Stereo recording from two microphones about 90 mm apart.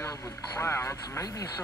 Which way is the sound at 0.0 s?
30° left (ahead or behind).